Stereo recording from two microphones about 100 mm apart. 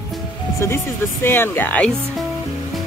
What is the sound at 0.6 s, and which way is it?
Speech, 25° left (ahead or behind).